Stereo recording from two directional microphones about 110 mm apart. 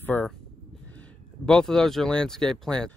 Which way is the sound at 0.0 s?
15° left (ahead or behind).